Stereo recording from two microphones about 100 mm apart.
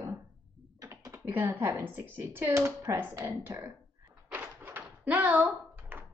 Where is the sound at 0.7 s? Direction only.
30° right (ahead or behind).